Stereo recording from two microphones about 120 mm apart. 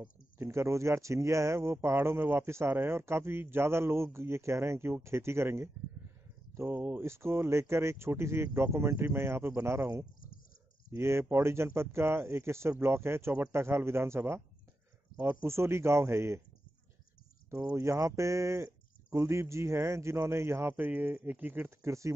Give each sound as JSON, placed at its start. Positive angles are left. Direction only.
{"t": 0.4, "sound": "speech", "side_deg": -25}
{"t": 17.5, "sound": "speech", "side_deg": -25}